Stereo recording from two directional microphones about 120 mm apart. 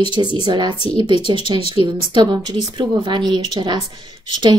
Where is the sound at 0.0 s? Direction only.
40° right (ahead or behind).